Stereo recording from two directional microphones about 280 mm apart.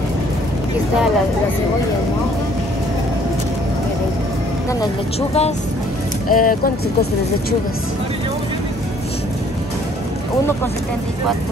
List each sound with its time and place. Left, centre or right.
6.2 s speech: left